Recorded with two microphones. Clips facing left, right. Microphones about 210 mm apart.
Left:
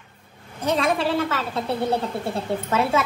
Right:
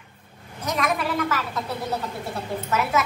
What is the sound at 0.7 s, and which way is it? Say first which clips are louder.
A woman's voice: left 4 dB; 30° left (ahead or behind).